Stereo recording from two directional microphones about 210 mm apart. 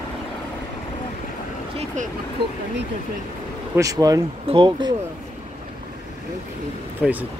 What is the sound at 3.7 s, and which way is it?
Speech, 15° right (ahead or behind).